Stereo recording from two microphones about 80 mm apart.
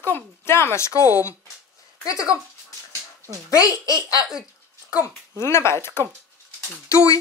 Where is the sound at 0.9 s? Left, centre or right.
Left.